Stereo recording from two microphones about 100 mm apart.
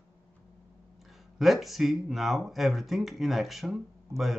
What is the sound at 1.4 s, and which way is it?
Speech, centre (ahead or behind).